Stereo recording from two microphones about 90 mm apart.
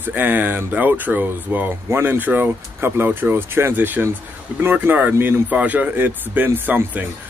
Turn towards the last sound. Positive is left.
turn(degrees=-20)  # may be behind; listen again after turning